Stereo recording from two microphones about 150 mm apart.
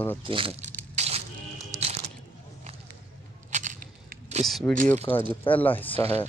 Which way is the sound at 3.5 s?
55° right (ahead or behind).